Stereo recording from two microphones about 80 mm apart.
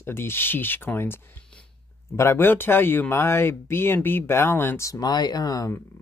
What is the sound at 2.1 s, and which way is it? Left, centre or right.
Speech, left.